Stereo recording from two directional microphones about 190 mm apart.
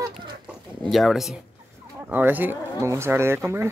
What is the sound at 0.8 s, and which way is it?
Speech, centre (ahead or behind).